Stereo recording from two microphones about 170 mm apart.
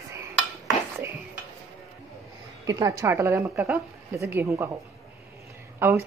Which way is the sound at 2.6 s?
20° right (ahead or behind).